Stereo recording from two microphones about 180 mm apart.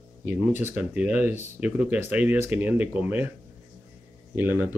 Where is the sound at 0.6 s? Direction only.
10° right (ahead or behind).